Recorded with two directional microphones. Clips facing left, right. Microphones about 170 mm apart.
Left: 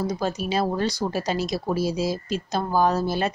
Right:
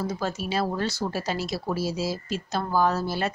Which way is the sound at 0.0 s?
15° left (ahead or behind).